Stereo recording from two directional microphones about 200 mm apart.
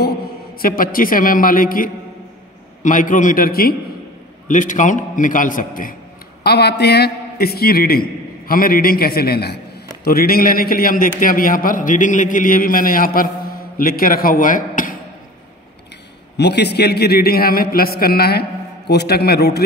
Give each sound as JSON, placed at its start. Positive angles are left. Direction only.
{"t": 0.6, "sound": "a man's voice", "side_deg": 45}
{"t": 6.4, "sound": "a man's voice", "side_deg": 55}
{"t": 16.3, "sound": "a man's voice", "side_deg": 55}